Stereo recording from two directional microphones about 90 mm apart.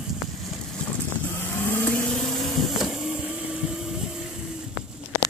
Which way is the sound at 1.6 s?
25° left (ahead or behind).